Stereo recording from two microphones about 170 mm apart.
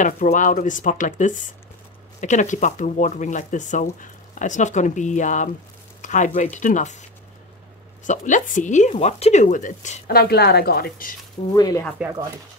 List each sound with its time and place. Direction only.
0.0 s speech: 50° left (ahead or behind)
11.5 s speech: 20° left (ahead or behind)